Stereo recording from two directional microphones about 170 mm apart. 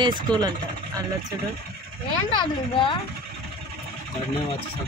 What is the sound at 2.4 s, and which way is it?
Speech, 30° left (ahead or behind).